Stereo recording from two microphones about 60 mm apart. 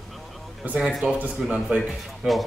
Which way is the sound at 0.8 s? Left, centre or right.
Centre.